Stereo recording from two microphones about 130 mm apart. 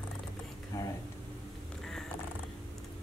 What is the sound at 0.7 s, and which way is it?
Speech, 20° left (ahead or behind).